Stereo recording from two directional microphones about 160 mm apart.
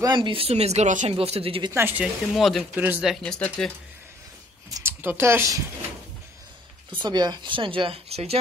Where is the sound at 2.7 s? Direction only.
10° right (ahead or behind); by 3.7 s 10° left (ahead or behind).